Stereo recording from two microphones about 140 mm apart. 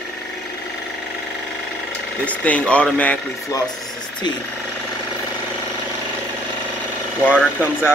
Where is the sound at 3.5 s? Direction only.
25° left (ahead or behind).